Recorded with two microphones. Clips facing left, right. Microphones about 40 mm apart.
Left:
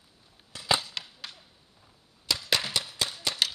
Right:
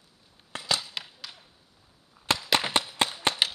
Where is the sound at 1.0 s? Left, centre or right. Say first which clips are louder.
Right 1 dB; centre.